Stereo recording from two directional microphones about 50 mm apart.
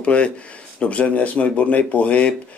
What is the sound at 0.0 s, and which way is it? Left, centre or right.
Speech, left.